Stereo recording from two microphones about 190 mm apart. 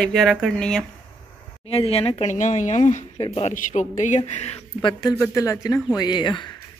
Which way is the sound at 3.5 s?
40° left (ahead or behind).